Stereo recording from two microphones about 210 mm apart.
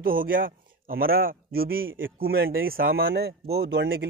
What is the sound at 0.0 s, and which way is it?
A man's voice, 45° right (ahead or behind).